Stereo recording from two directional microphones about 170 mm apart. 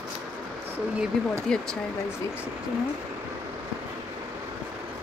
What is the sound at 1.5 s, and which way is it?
Speech, 5° left (ahead or behind).